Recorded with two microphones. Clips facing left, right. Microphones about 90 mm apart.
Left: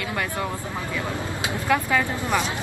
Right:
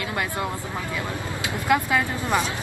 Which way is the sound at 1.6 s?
10° right (ahead or behind).